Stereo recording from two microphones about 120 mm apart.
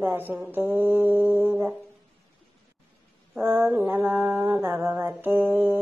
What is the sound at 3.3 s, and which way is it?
Mantra, 20° right (ahead or behind).